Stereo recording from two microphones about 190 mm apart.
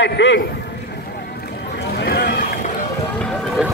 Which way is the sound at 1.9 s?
55° left (ahead or behind).